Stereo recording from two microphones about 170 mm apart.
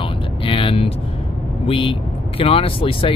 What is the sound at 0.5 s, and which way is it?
Vehicle, 30° left (ahead or behind).